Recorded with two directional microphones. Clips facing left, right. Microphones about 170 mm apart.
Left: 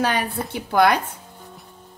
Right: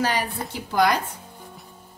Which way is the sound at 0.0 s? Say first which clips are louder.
Left 2 dB; 60° left (ahead or behind).